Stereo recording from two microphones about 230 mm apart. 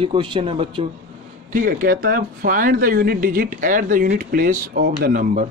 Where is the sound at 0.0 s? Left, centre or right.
Right.